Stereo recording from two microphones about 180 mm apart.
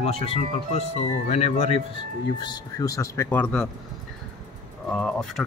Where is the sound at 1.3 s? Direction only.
40° left (ahead or behind).